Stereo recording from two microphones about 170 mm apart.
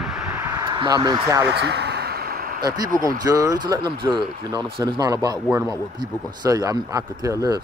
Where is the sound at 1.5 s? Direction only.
75° right (ahead or behind); by 2.6 s 60° right (ahead or behind).